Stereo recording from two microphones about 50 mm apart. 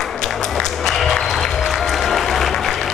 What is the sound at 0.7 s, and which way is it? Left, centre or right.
Applause, centre.